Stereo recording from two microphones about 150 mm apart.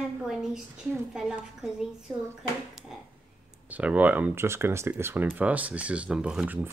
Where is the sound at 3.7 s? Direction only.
10° right (ahead or behind).